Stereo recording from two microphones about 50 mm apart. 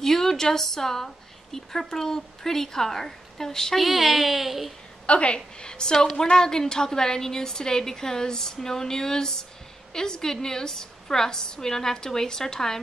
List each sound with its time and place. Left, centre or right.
0.0 s a woman's voice: centre
3.8 s speech: centre
5.0 s a woman's voice: left